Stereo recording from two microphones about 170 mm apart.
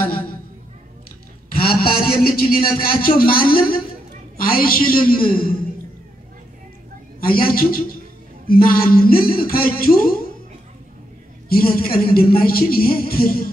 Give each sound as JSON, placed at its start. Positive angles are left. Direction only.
{"t": 1.5, "sound": "a man's voice", "side_deg": 60}
{"t": 7.2, "sound": "a man's voice", "side_deg": 60}
{"t": 11.5, "sound": "a man's voice", "side_deg": 60}